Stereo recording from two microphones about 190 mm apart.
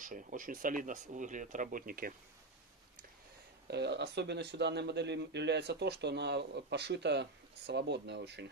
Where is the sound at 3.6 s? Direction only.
60° right (ahead or behind).